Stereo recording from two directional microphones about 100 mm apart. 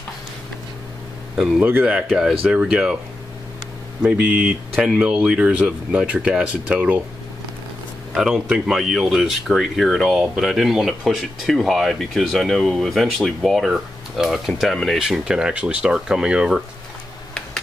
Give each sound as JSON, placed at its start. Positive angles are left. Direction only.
{"t": 1.6, "sound": "speech", "side_deg": -15}
{"t": 4.0, "sound": "speech", "side_deg": -10}
{"t": 8.1, "sound": "speech", "side_deg": -5}